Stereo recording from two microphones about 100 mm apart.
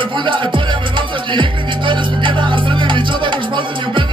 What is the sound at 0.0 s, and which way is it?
Music, 55° right (ahead or behind).